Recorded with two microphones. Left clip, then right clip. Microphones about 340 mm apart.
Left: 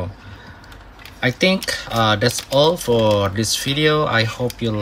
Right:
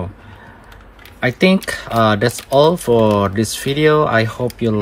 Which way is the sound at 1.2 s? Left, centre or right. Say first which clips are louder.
Right 2 dB; centre.